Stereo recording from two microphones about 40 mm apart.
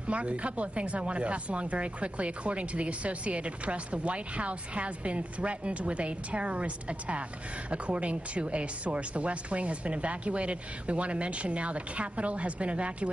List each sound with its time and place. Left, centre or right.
0.1 s speech: right